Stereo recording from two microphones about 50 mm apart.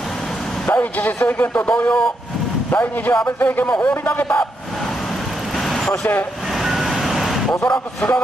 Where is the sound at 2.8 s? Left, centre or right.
Left.